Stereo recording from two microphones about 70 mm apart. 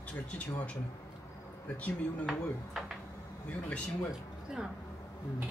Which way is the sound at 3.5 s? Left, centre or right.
Centre.